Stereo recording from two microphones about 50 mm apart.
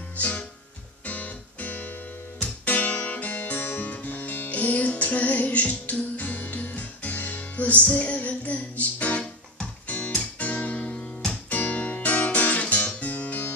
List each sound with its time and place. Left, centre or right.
0.2 s music: left
2.4 s guitar: left
9.8 s music: left